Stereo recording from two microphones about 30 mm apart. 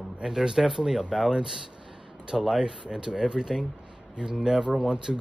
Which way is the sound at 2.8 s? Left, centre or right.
Right.